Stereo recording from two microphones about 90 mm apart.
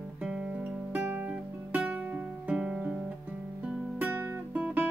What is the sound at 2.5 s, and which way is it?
Guitar, 5° right (ahead or behind).